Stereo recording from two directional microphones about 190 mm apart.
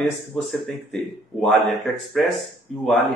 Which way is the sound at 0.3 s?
Centre (ahead or behind).